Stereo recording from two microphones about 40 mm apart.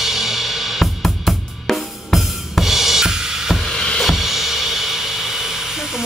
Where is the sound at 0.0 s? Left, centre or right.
Centre.